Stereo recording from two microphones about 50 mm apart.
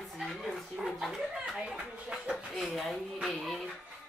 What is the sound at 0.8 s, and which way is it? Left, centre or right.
Speech, centre.